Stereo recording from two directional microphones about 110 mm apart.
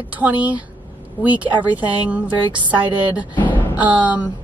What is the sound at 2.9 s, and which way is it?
Speech, 50° right (ahead or behind).